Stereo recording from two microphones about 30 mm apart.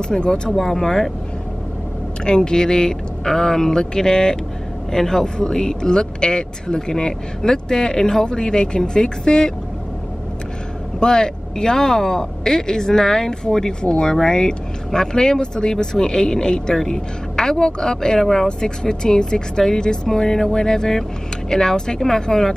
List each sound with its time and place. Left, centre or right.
0.1 s speech: left
0.5 s speech: centre
2.2 s speech: left
11.0 s speech: left